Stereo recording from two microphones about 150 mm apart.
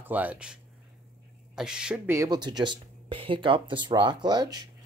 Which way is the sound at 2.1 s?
30° right (ahead or behind).